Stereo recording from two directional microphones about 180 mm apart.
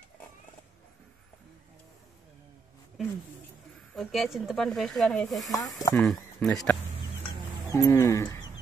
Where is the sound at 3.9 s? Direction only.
Centre (ahead or behind); by 8.4 s 15° left (ahead or behind).